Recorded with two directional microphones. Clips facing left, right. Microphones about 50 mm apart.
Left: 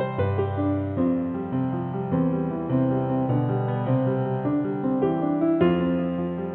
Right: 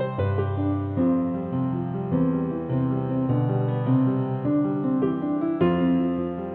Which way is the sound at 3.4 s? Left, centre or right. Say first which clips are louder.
Even; centre.